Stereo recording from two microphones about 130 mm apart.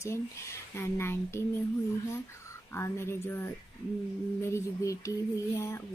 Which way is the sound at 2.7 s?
20° left (ahead or behind).